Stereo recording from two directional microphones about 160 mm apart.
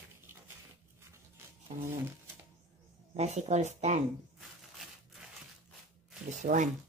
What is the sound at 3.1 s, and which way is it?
Speech, 45° right (ahead or behind).